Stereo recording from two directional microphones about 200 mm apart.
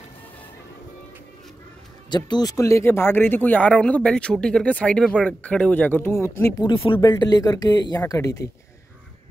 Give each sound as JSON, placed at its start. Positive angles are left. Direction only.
{"t": 2.0, "sound": "speech", "side_deg": 20}
{"t": 6.6, "sound": "speech", "side_deg": 25}